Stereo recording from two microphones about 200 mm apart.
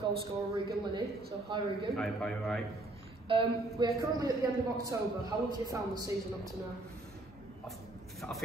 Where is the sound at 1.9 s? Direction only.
Centre (ahead or behind).